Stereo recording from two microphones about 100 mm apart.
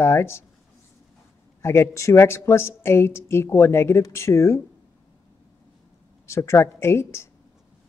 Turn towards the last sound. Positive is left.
turn(degrees=25)  # may be behind; listen again after turning